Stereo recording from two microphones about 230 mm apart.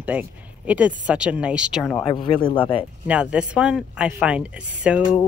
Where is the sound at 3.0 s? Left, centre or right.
Centre.